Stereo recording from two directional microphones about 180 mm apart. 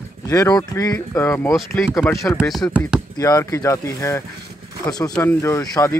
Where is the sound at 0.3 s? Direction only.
20° left (ahead or behind).